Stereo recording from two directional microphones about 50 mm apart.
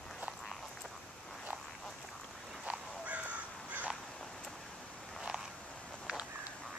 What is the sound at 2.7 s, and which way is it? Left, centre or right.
Crow, right.